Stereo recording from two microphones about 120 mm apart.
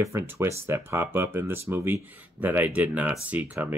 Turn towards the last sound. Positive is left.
turn(degrees=-15)  # may be behind; listen again after turning